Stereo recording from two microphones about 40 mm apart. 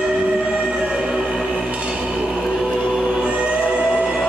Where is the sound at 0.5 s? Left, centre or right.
Right.